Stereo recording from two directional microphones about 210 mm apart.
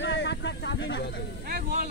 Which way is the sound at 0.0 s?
55° left (ahead or behind).